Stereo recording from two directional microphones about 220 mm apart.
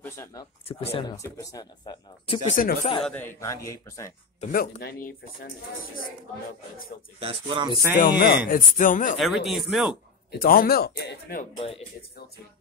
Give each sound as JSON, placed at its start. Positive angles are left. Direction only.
{"t": 0.0, "sound": "speech", "side_deg": 10}
{"t": 2.5, "sound": "speech", "side_deg": 35}
{"t": 3.0, "sound": "speech", "side_deg": 5}
{"t": 4.4, "sound": "speech", "side_deg": 40}
{"t": 7.2, "sound": "speech", "side_deg": -25}
{"t": 8.0, "sound": "speech", "side_deg": 45}
{"t": 9.2, "sound": "speech", "side_deg": 0}
{"t": 10.3, "sound": "speech", "side_deg": 40}
{"t": 11.5, "sound": "speech", "side_deg": 25}